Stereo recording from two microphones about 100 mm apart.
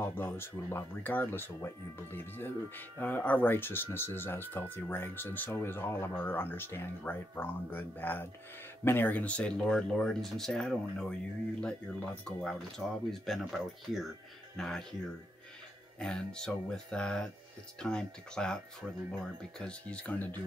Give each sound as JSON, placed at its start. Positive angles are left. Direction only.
{"t": 0.0, "sound": "speech", "side_deg": 20}
{"t": 16.0, "sound": "speech", "side_deg": 5}